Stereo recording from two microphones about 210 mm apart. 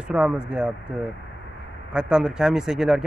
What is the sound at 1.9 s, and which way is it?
Speech, 5° right (ahead or behind).